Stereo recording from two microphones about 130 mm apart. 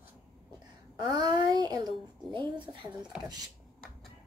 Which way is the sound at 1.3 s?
35° right (ahead or behind).